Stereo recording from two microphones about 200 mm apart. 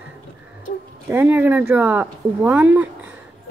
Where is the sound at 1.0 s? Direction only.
10° right (ahead or behind).